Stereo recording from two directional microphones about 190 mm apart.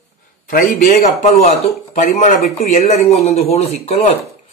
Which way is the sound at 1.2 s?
35° left (ahead or behind).